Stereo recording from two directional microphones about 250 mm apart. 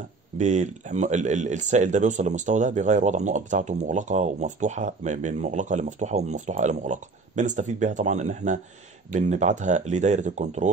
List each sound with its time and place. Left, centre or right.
0.4 s speech: right